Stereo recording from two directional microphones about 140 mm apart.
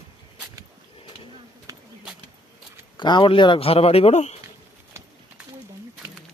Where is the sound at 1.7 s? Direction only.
25° right (ahead or behind).